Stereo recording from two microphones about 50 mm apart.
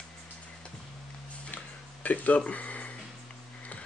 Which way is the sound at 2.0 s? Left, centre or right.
Left.